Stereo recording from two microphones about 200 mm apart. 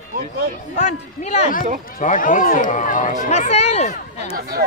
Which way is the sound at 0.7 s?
35° left (ahead or behind).